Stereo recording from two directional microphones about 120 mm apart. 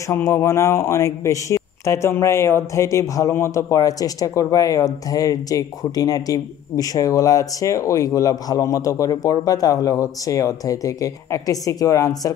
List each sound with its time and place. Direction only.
0.1 s speech: 25° left (ahead or behind)